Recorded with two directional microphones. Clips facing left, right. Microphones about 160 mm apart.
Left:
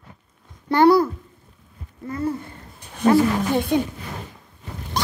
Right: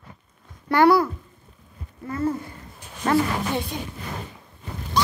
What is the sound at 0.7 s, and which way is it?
Speech, 25° left (ahead or behind).